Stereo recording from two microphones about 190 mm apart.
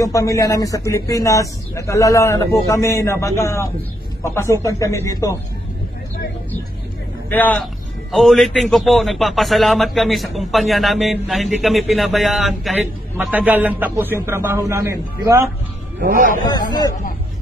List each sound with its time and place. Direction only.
0.0 s a man's voice: 15° left (ahead or behind)
7.2 s a man's voice: 10° left (ahead or behind); by 15.5 s 15° right (ahead or behind)
16.0 s a man's voice: 45° right (ahead or behind)
16.4 s a man's voice: 20° left (ahead or behind)